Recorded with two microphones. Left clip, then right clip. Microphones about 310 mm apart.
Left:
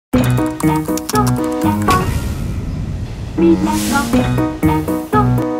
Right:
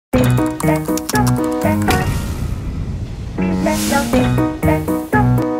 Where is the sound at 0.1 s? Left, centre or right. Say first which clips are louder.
Even; centre.